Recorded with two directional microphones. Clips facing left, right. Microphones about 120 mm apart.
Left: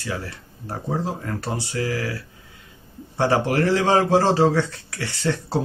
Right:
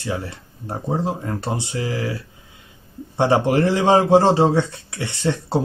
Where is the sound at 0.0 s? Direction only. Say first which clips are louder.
Right 3 dB; 20° right (ahead or behind).